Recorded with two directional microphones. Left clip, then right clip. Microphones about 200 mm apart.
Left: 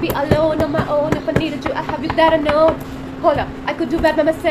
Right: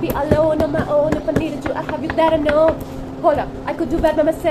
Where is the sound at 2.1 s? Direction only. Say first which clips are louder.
Left 1 dB; centre (ahead or behind).